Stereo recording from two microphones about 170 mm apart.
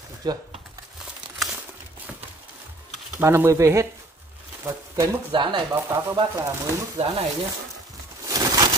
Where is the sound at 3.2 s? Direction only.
15° right (ahead or behind).